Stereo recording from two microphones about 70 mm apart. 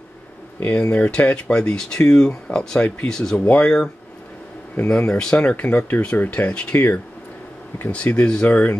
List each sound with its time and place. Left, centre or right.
0.6 s speech: left
3.3 s speech: left
3.6 s speech: centre
5.7 s speech: left